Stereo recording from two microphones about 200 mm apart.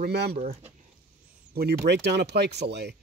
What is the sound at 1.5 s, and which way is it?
Speech, 50° right (ahead or behind).